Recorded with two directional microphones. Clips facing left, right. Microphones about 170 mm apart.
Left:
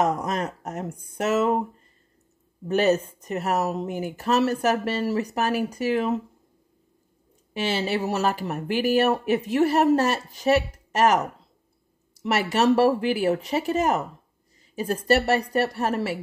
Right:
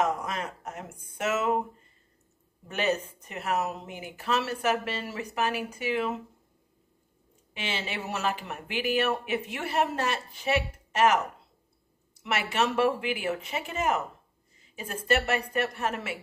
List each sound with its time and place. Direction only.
0.0 s speech: 40° left (ahead or behind)
2.7 s speech: 40° left (ahead or behind)
7.5 s speech: 40° left (ahead or behind)